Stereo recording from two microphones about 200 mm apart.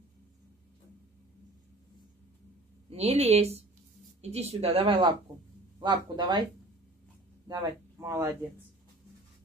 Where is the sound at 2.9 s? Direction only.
30° right (ahead or behind).